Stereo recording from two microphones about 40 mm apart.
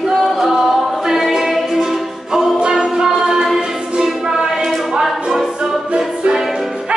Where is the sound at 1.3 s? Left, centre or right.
Centre.